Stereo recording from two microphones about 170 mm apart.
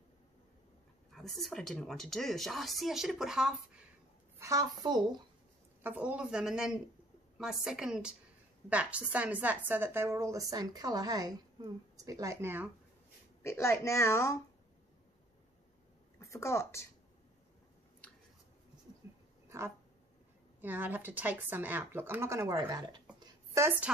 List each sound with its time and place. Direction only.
1.1 s a woman's voice: centre (ahead or behind)
4.4 s speech: 20° right (ahead or behind)
5.8 s a woman's voice: 10° right (ahead or behind)
13.4 s speech: 15° left (ahead or behind)
16.2 s speech: 15° left (ahead or behind)
19.0 s a sound: 15° right (ahead or behind)
20.6 s a woman's voice: 10° right (ahead or behind)
23.1 s a sound: 15° right (ahead or behind)